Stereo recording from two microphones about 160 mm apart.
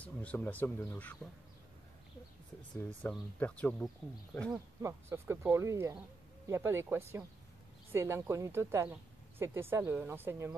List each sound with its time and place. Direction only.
0.0 s speech: 10° left (ahead or behind)
2.7 s speech: 5° left (ahead or behind)
4.8 s speech: 15° right (ahead or behind)